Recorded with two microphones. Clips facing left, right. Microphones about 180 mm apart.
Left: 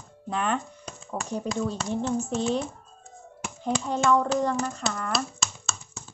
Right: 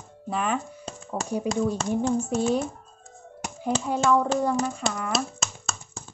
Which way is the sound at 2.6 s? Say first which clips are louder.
Right 2 dB; 40° right (ahead or behind).